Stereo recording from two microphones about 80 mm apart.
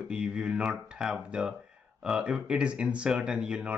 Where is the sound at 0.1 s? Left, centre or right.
Centre.